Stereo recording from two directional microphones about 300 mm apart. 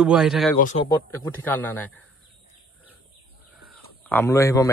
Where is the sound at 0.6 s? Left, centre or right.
Left.